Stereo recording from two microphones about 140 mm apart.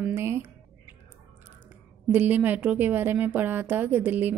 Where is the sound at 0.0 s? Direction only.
15° right (ahead or behind).